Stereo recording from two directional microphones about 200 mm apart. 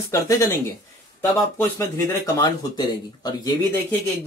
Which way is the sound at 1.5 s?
15° left (ahead or behind).